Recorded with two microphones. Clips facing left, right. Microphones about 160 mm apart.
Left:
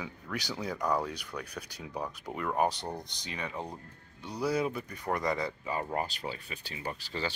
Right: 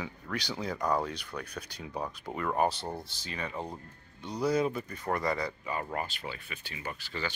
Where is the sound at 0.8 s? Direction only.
10° right (ahead or behind).